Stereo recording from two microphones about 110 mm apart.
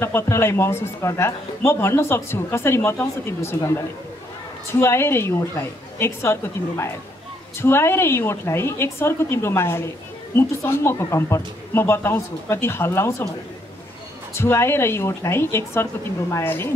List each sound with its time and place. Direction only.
0.0 s a man's voice: 25° left (ahead or behind)
14.3 s a man's voice: 20° left (ahead or behind)